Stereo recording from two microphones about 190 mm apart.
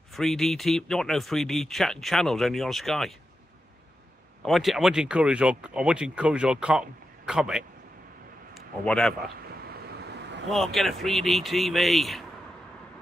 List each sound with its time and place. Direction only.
0.1 s speech: centre (ahead or behind)
4.5 s speech: centre (ahead or behind)
8.8 s speech: 5° left (ahead or behind)
9.5 s vehicle: 55° right (ahead or behind)
10.5 s speech: centre (ahead or behind)